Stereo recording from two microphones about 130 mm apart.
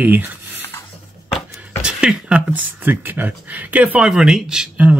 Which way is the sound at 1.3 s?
5° right (ahead or behind).